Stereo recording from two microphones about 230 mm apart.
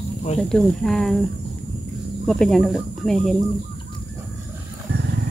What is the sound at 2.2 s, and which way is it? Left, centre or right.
Speech, centre.